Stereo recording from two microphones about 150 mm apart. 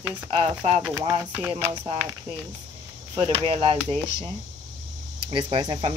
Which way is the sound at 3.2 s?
40° right (ahead or behind).